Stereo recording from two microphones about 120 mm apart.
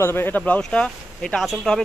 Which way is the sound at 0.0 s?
20° left (ahead or behind).